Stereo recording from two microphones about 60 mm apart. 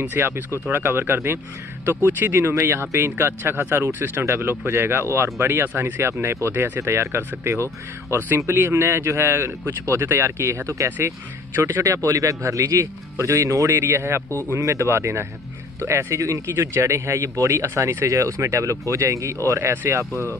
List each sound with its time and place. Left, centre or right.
0.2 s speech: right
4.3 s speech: right
4.6 s speech: right
6.5 s speech: right
6.8 s speech: right
10.4 s speech: right
11.5 s speech: right
11.8 s speech: right
19.7 s speech: right